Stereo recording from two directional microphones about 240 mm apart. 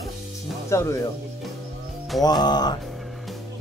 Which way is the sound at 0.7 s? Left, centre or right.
Centre.